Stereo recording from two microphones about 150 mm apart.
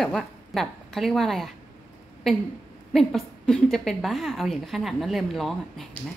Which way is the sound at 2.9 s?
5° left (ahead or behind).